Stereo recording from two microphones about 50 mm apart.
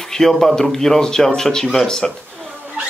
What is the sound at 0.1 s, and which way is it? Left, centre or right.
A man's voice, centre.